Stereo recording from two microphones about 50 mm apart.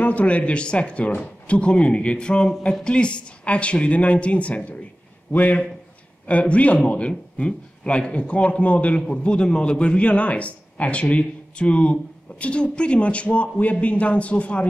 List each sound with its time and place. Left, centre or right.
0.0 s a man's voice: left